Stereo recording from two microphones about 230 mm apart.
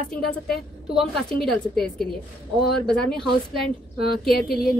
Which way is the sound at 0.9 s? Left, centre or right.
Centre.